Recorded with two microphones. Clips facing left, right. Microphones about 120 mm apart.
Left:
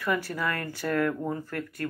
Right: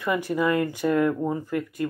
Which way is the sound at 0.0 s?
15° right (ahead or behind).